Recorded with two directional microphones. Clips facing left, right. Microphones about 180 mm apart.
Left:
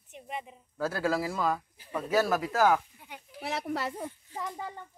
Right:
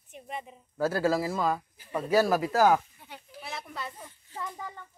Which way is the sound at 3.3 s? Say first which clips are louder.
Left 7 dB; 75° left (ahead or behind).